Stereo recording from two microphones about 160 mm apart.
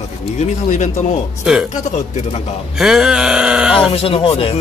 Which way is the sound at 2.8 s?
5° right (ahead or behind).